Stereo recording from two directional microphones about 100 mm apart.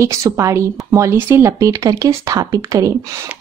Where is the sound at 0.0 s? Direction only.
30° right (ahead or behind).